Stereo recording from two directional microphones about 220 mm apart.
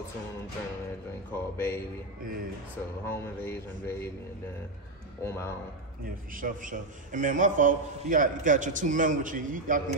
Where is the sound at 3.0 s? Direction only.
10° left (ahead or behind).